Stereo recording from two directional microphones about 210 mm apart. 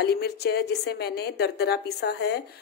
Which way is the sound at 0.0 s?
50° left (ahead or behind).